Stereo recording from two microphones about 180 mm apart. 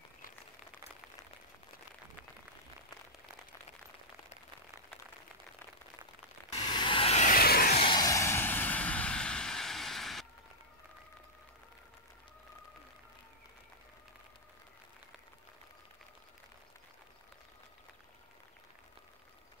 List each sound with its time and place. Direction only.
6.6 s vehicle: 25° left (ahead or behind); by 7.7 s 55° left (ahead or behind)
7.7 s vehicle: 25° left (ahead or behind); by 10.2 s centre (ahead or behind)